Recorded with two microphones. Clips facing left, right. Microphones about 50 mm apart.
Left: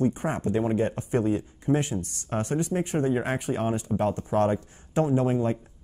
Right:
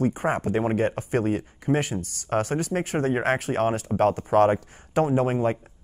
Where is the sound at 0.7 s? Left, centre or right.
Right.